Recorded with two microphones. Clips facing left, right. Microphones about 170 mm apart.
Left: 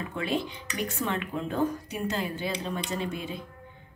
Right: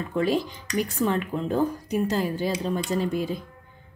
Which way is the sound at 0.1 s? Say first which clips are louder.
Right 7 dB; 40° right (ahead or behind).